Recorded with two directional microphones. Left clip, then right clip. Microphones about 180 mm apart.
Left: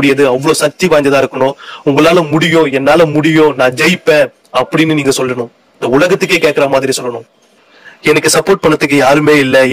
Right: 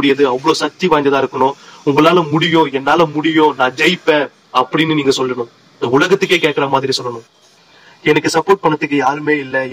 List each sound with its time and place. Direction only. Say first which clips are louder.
0.0 s a man's voice: left 3 dB; 30° left (ahead or behind)